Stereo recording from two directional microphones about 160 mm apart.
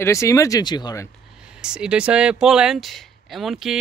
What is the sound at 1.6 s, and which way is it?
Speech, 5° right (ahead or behind).